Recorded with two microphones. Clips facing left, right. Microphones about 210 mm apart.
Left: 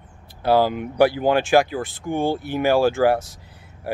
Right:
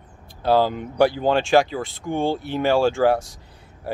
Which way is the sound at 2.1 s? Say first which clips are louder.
Left 1 dB; 15° left (ahead or behind).